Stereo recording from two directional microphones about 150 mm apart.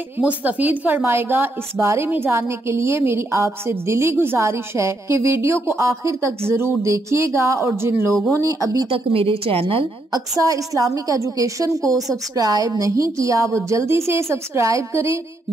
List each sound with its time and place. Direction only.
0.4 s a woman's voice: 10° right (ahead or behind)
8.9 s a woman's voice: 40° right (ahead or behind)
10.1 s a woman's voice: 25° right (ahead or behind)